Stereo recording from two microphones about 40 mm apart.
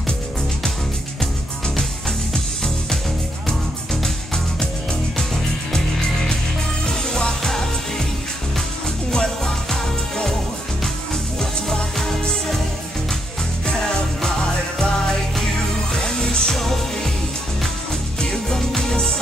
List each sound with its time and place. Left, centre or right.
1.8 s music: centre
5.7 s music: centre
9.1 s music: centre
11.7 s music: centre
15.9 s music: centre
16.5 s music: centre
18.2 s music: centre